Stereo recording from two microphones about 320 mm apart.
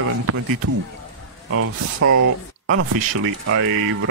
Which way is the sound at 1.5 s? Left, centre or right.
Right.